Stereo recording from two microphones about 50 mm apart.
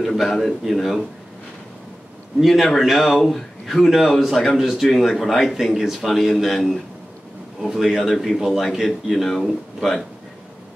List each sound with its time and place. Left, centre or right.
0.0 s a man's voice: centre
2.4 s a man's voice: centre